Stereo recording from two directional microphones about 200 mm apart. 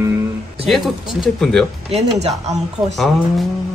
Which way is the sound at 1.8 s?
35° right (ahead or behind).